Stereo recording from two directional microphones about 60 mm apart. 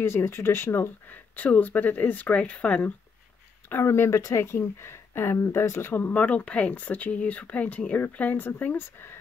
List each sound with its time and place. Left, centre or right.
0.0 s speech: left
3.7 s speech: left
4.2 s speech: left
6.1 s speech: left